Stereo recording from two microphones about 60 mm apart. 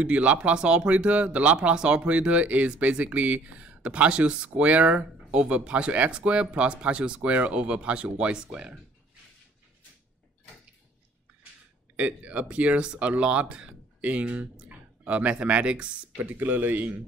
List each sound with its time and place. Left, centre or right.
0.0 s speech: right
12.0 s speech: right
16.2 s speech: right